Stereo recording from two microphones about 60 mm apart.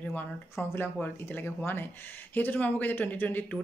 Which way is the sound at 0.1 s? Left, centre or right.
Left.